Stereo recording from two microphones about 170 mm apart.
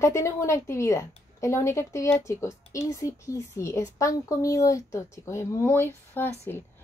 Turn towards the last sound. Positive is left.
turn(degrees=10)  # may be behind; listen again after turning